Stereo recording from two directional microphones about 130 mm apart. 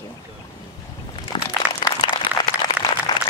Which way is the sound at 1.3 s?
40° left (ahead or behind).